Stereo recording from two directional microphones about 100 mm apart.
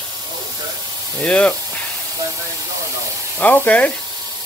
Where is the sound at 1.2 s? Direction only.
15° left (ahead or behind).